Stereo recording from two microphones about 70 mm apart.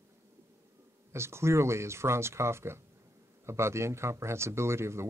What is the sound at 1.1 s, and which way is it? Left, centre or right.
Speech, right.